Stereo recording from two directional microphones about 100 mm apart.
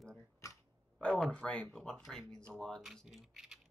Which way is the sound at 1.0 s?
10° left (ahead or behind).